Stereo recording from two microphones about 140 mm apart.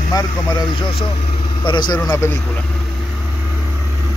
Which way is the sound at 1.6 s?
30° left (ahead or behind).